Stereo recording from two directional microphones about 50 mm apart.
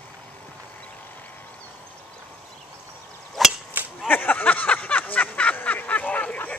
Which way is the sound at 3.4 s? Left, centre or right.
Centre.